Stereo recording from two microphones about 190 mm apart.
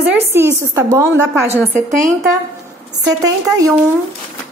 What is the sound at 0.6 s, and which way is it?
Speech, 15° right (ahead or behind).